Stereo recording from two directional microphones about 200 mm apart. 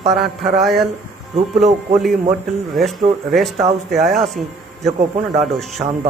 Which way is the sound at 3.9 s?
Centre (ahead or behind).